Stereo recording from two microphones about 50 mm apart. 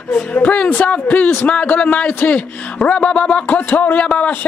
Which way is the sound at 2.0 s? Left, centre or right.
Left.